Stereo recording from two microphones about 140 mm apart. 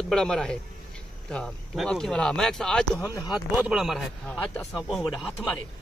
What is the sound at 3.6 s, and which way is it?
Speech, 5° right (ahead or behind).